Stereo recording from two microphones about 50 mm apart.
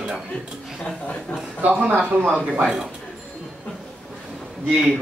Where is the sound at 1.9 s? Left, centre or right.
Right.